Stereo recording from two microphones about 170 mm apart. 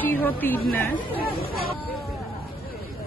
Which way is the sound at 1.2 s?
60° left (ahead or behind).